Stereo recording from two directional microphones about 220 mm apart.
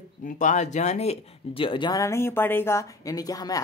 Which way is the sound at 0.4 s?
35° left (ahead or behind).